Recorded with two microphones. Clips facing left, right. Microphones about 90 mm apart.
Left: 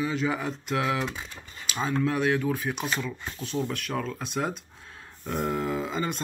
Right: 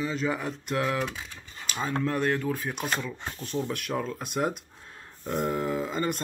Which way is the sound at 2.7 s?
50° right (ahead or behind).